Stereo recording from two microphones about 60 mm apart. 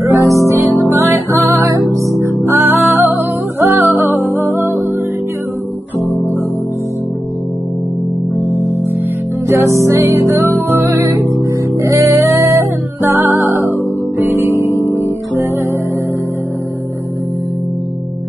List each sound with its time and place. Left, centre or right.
0.0 s music: right
0.6 s music: right
1.0 s music: right
9.5 s music: right
11.2 s music: right
13.0 s music: right